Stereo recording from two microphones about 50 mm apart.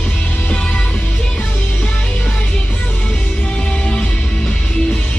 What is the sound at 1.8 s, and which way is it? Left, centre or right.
Music, centre.